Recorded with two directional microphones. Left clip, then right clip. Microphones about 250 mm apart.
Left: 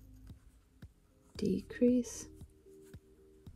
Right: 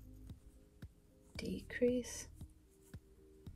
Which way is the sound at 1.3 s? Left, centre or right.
Left.